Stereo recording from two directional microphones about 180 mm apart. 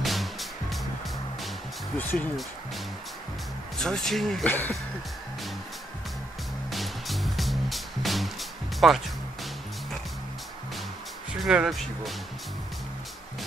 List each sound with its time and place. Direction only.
0.0 s music: centre (ahead or behind)
2.0 s speech: 10° left (ahead or behind)
3.8 s speech: 5° left (ahead or behind)
6.7 s music: centre (ahead or behind)
11.4 s speech: 5° right (ahead or behind)